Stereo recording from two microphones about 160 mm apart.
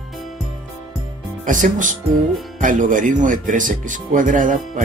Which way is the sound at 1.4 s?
55° right (ahead or behind).